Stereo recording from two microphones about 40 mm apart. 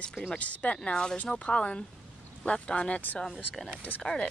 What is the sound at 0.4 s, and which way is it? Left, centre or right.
Speech, left.